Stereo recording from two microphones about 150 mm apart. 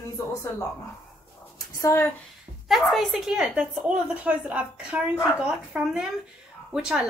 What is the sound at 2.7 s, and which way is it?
A woman's voice, centre (ahead or behind).